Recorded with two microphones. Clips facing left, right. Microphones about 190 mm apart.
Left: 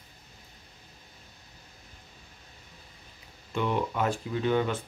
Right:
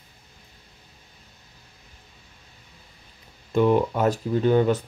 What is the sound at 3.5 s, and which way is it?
Speech, 40° right (ahead or behind).